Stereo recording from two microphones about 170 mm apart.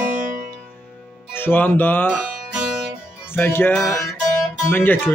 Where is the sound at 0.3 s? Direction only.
55° right (ahead or behind).